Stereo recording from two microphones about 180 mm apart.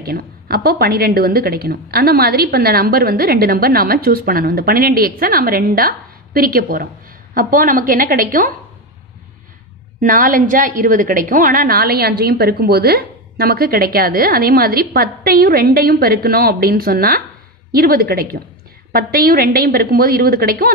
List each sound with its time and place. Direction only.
0.0 s a woman's voice: 60° right (ahead or behind)
9.9 s a woman's voice: 50° right (ahead or behind)